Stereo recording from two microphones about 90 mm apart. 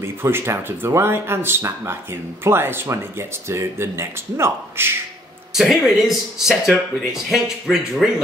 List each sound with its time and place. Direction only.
0.0 s speech: 25° right (ahead or behind)
5.5 s speech: 5° right (ahead or behind)